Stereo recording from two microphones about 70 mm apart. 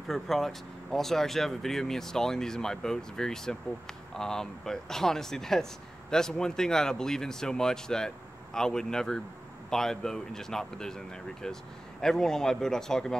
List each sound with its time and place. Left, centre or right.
0.1 s speech: centre